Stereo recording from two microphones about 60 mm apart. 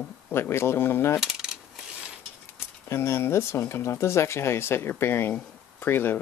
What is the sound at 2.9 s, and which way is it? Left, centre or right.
Speech, left.